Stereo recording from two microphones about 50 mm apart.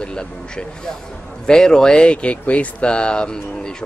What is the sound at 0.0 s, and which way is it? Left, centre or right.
A man's voice, centre.